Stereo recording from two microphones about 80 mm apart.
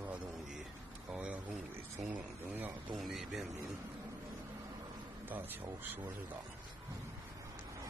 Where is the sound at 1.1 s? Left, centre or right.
Centre.